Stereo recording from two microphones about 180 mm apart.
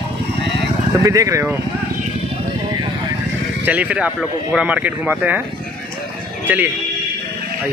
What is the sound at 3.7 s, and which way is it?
Speech, 10° right (ahead or behind).